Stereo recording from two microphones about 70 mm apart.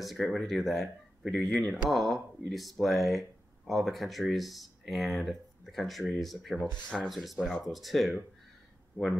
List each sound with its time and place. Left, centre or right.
0.0 s speech: centre